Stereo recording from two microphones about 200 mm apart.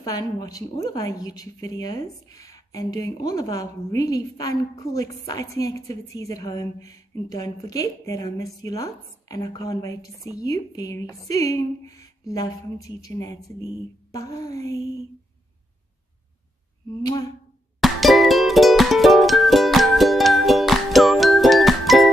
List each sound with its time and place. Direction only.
0.0 s a woman's voice: 20° left (ahead or behind)
17.7 s music: centre (ahead or behind)